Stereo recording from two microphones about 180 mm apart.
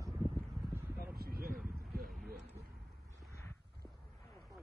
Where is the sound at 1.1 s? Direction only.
60° right (ahead or behind).